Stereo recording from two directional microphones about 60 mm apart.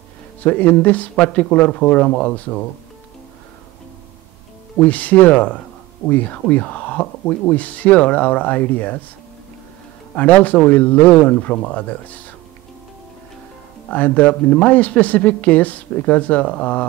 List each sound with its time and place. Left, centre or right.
0.4 s speech: left
4.7 s speech: left
10.1 s speech: left
13.8 s speech: left